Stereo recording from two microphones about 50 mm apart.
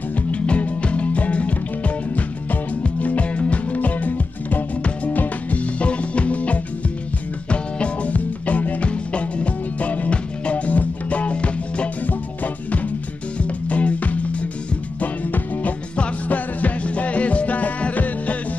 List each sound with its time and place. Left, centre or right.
0.3 s music: left
3.0 s music: left
13.7 s music: left